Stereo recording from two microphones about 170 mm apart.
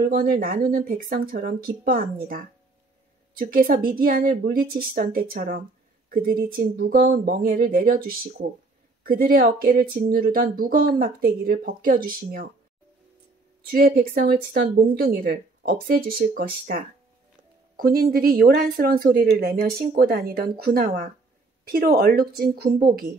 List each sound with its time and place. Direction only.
0.0 s speech: 60° right (ahead or behind)
13.6 s speech: 60° right (ahead or behind)